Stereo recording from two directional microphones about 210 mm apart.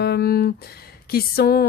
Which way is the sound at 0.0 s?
50° left (ahead or behind).